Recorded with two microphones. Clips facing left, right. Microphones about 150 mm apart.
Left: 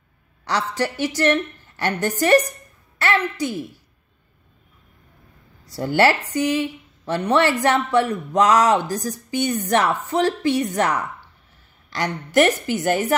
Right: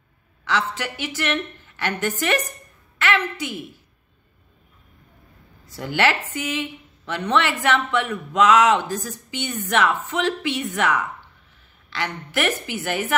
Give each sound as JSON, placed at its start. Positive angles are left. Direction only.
{"t": 0.5, "sound": "a man's voice", "side_deg": 40}
{"t": 5.7, "sound": "a man's voice", "side_deg": 40}